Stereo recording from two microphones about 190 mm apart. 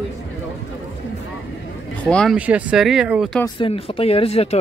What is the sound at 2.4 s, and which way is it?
Speech, 5° right (ahead or behind).